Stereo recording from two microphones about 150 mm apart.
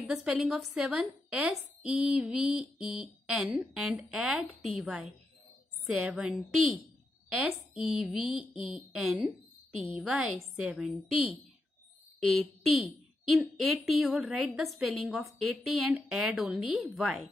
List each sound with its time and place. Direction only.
0.1 s a woman's voice: 5° right (ahead or behind)